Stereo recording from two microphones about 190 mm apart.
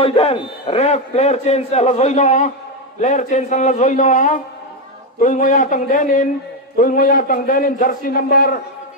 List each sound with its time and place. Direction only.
0.0 s a man's voice: 30° left (ahead or behind); by 8.5 s 50° left (ahead or behind)